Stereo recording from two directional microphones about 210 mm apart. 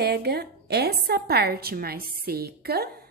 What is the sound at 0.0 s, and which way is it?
A woman's voice, 50° right (ahead or behind).